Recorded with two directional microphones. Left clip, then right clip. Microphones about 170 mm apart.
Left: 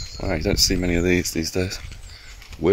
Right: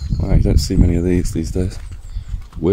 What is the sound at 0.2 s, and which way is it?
Speech, 5° right (ahead or behind).